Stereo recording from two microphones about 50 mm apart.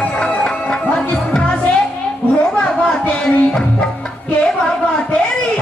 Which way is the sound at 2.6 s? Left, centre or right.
Left.